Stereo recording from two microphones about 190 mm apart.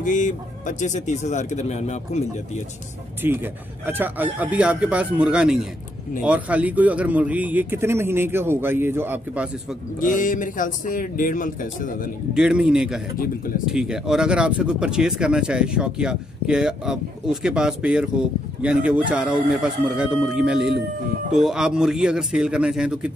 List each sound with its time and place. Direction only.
0.0 s speech: 40° left (ahead or behind)
3.2 s speech: 10° right (ahead or behind)
9.9 s speech: 45° left (ahead or behind)
12.4 s speech: 5° right (ahead or behind)